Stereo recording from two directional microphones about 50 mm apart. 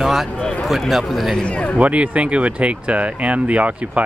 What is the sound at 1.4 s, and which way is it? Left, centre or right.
Speech, left.